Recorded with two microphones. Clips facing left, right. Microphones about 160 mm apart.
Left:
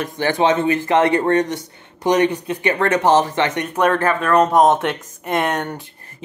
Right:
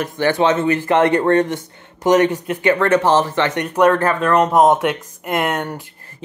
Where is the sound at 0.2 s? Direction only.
20° left (ahead or behind).